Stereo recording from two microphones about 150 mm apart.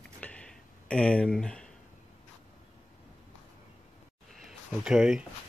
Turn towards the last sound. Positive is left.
turn(degrees=-5)  # may be behind; listen again after turning